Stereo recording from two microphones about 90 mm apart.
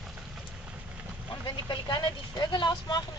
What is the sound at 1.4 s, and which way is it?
Speech, 60° left (ahead or behind).